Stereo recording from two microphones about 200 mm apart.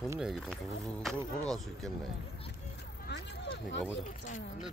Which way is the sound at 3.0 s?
60° left (ahead or behind).